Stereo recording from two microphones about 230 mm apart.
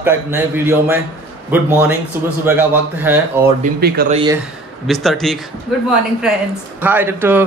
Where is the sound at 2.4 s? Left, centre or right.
Centre.